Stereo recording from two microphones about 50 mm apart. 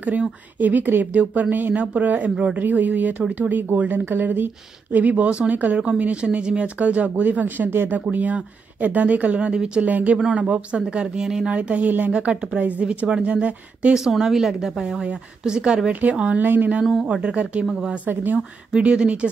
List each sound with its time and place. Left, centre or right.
0.6 s speech: right
4.9 s speech: right
9.5 s speech: centre
9.8 s speech: right
10.1 s a woman's voice: centre
11.5 s a woman's voice: right
12.1 s a woman's voice: right
13.9 s speech: centre
15.9 s speech: right
17.0 s a woman's voice: right
18.0 s speech: right
18.8 s a woman's voice: right